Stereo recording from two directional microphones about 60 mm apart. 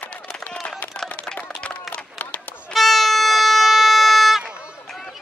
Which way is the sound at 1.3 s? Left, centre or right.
Left.